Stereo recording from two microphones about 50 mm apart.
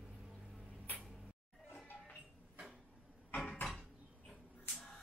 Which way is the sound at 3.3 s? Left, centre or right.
Left.